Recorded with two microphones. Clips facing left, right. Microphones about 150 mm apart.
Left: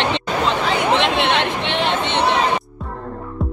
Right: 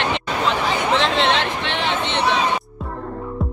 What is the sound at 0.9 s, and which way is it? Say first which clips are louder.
Chatter: left 1 dB; 15° left (ahead or behind).